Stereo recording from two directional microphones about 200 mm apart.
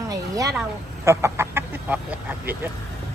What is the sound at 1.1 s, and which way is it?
Speech, 15° right (ahead or behind).